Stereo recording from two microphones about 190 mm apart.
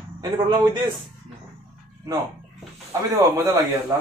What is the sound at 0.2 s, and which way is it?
Speech, 25° right (ahead or behind).